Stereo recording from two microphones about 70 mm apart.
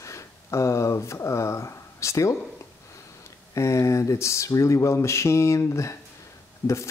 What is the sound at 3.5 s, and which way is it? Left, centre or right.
Speech, left.